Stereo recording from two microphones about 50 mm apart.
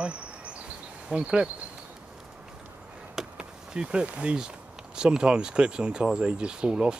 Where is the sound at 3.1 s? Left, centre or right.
Centre.